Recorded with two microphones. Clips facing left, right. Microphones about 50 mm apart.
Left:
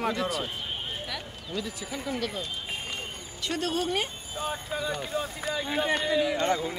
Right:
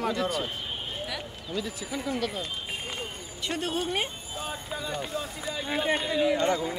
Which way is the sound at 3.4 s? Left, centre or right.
Right.